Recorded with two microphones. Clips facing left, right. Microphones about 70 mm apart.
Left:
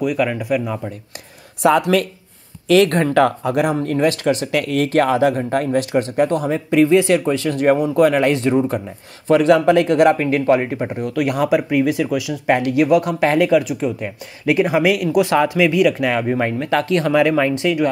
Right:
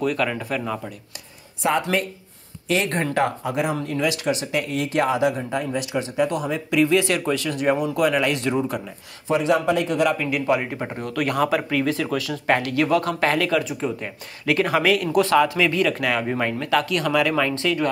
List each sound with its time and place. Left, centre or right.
0.0 s speech: centre
1.6 s speech: left
2.7 s speech: left
4.5 s speech: left
9.3 s speech: left
10.1 s speech: left
11.1 s speech: centre
13.6 s speech: centre